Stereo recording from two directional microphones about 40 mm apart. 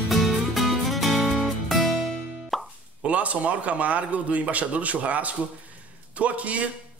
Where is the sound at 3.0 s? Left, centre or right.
Right.